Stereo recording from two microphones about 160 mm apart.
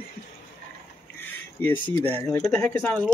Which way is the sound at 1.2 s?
10° left (ahead or behind).